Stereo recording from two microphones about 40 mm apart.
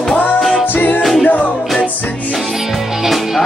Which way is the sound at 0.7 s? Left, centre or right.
Left.